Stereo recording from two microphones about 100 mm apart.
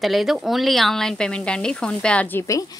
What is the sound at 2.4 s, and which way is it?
Speech, 35° left (ahead or behind).